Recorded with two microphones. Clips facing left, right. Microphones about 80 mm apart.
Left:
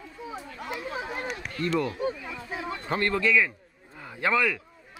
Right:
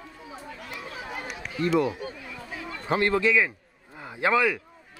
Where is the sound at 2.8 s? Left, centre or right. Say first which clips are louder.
Right 3 dB; centre.